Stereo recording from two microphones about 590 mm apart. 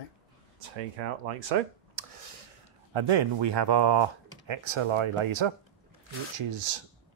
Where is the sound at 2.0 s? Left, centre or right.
Right.